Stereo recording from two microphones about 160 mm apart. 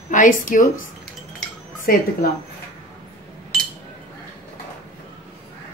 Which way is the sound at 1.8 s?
70° left (ahead or behind).